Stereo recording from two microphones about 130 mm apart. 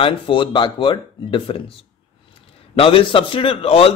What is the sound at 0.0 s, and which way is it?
A man's voice, 40° left (ahead or behind).